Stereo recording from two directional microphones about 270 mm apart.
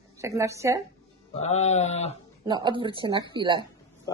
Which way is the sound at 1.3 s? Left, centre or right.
Left.